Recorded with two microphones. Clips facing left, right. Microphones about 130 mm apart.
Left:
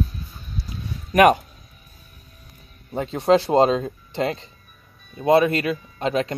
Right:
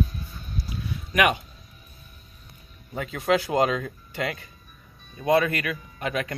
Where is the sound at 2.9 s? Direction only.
30° left (ahead or behind).